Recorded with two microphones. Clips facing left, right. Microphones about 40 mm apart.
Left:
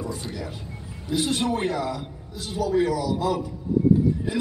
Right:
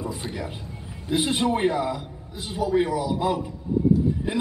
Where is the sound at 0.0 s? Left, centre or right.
Right.